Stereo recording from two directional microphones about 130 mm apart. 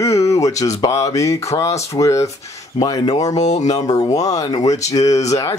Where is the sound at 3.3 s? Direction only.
60° left (ahead or behind).